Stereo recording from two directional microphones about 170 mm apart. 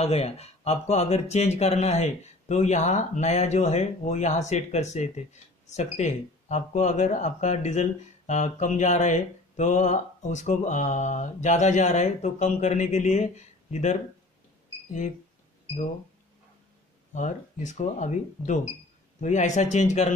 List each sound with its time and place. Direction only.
0.0 s speech: 35° left (ahead or behind)
17.1 s speech: 45° left (ahead or behind)